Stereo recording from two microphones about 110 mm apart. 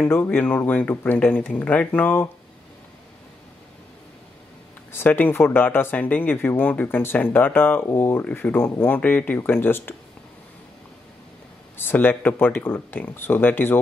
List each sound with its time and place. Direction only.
0.0 s speech: 20° left (ahead or behind)
4.9 s speech: 15° left (ahead or behind)
11.7 s speech: 20° left (ahead or behind)